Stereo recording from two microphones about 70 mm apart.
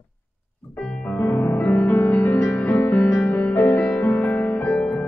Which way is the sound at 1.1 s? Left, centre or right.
Left.